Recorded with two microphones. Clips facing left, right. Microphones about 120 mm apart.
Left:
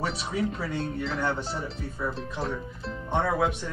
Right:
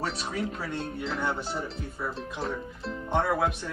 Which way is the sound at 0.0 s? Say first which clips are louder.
Left 2 dB; centre (ahead or behind).